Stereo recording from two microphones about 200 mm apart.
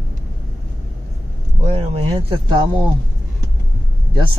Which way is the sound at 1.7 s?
30° right (ahead or behind).